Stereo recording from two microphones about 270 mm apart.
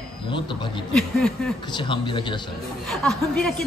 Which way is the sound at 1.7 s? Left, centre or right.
Centre.